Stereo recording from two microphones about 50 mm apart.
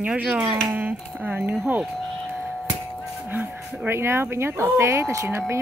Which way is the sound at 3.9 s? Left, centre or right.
Right.